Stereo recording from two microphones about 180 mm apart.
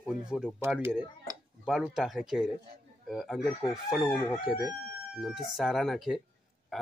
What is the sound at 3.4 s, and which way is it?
Chicken, 20° left (ahead or behind).